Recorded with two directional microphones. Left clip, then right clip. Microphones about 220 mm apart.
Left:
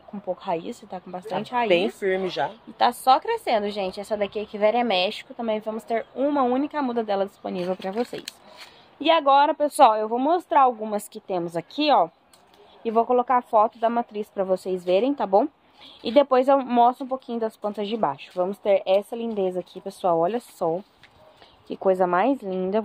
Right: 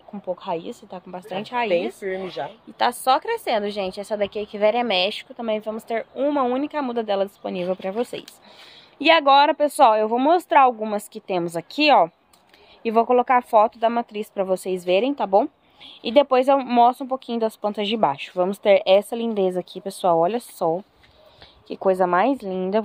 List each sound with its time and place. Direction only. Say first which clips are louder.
0.4 s a woman's voice: even; centre (ahead or behind)
2.0 s speech: left 4 dB; 45° left (ahead or behind)
2.8 s speech: left 1 dB; 15° right (ahead or behind)
9.0 s speech: right 3 dB; 20° right (ahead or behind)
9.7 s a woman's voice: right 1 dB; centre (ahead or behind)
9.9 s speech: right 4 dB; 25° right (ahead or behind)
10.9 s a woman's voice: right 2 dB; centre (ahead or behind)
11.7 s speech: right 4 dB; 20° right (ahead or behind)